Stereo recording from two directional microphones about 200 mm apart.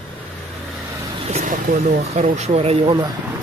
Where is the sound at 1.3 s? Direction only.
40° right (ahead or behind).